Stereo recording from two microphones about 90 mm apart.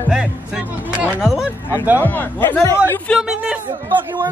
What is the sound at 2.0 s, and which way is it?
Speech, 20° left (ahead or behind).